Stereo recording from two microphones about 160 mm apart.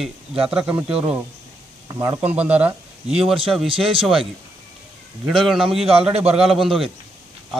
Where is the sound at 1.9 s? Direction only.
25° right (ahead or behind).